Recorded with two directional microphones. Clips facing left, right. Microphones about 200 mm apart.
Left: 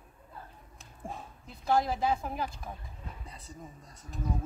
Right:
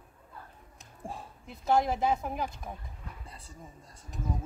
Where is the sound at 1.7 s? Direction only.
20° right (ahead or behind).